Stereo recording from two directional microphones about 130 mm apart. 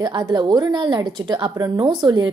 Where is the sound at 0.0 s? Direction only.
35° right (ahead or behind).